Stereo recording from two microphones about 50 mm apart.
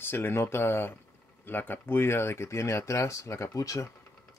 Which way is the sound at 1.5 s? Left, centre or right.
Left.